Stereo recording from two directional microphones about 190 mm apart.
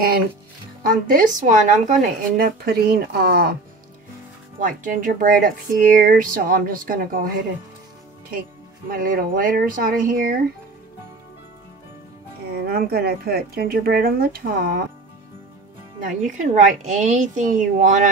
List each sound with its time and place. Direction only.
0.8 s speech: 45° right (ahead or behind)
4.6 s speech: 45° right (ahead or behind)
8.3 s speech: 50° right (ahead or behind)
12.5 s speech: 50° right (ahead or behind)
16.0 s speech: 40° right (ahead or behind)